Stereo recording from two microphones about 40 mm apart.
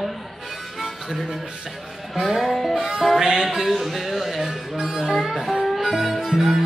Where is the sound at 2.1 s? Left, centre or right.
Centre.